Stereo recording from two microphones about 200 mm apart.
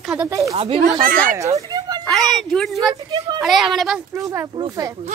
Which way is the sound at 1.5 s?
20° right (ahead or behind).